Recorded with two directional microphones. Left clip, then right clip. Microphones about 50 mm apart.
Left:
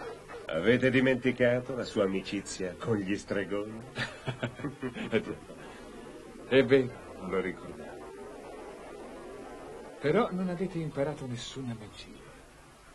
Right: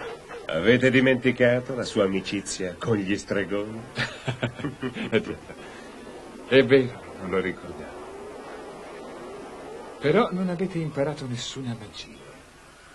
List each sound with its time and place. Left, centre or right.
0.5 s speech: left
6.5 s speech: left
10.0 s a man's voice: centre
11.3 s speech: left